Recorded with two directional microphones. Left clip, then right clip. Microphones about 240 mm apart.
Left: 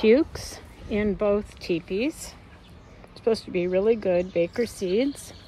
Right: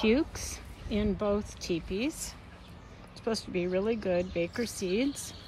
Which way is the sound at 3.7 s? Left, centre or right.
Left.